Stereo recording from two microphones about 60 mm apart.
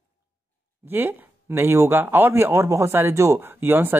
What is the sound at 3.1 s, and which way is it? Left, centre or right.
Speech, right.